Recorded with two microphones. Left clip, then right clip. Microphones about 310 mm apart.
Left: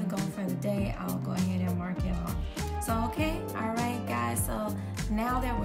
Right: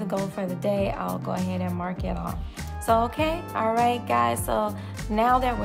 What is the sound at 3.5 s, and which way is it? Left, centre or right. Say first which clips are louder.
Speech: right 10 dB; centre.